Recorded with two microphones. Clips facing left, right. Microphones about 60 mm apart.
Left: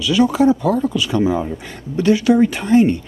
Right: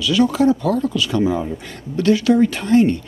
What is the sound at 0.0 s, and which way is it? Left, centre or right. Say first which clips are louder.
Speech: left 1 dB; centre.